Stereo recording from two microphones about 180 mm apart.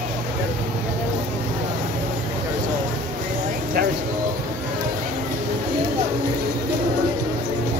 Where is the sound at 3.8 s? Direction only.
55° right (ahead or behind).